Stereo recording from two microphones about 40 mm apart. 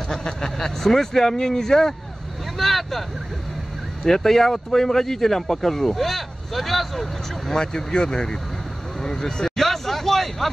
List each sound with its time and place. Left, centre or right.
0.1 s speech: centre
7.5 s speech: centre
9.0 s vehicle: centre